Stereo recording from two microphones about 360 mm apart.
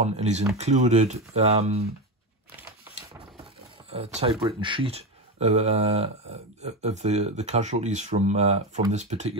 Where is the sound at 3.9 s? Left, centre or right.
Centre.